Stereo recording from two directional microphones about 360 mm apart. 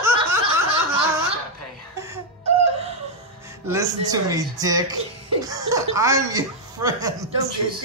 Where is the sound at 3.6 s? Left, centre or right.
Centre.